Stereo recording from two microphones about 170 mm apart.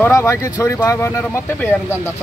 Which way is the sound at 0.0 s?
15° left (ahead or behind).